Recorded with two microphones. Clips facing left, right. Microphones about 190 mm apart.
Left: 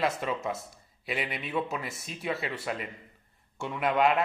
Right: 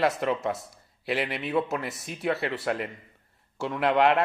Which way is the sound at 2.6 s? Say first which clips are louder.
Right 5 dB; 70° right (ahead or behind).